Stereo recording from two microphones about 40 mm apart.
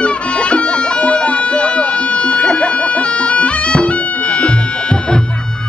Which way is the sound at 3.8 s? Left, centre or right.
Left.